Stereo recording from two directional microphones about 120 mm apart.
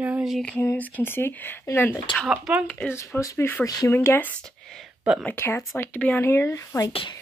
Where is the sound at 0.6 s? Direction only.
15° left (ahead or behind).